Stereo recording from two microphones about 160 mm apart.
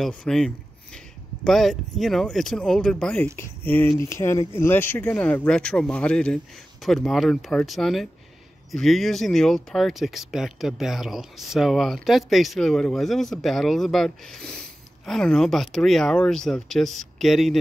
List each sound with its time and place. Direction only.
0.0 s speech: 5° left (ahead or behind)